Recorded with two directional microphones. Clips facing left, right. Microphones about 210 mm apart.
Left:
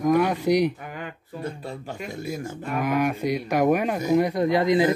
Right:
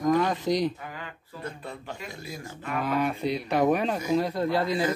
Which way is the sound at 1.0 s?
40° left (ahead or behind).